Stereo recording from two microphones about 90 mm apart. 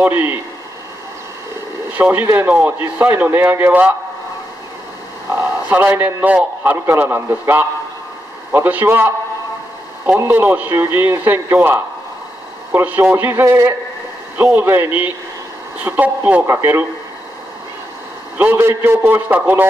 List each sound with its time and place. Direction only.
0.0 s a man's voice: 20° right (ahead or behind)
2.0 s a man's voice: 15° right (ahead or behind)
5.4 s a man's voice: 20° right (ahead or behind)
18.4 s a man's voice: 25° right (ahead or behind)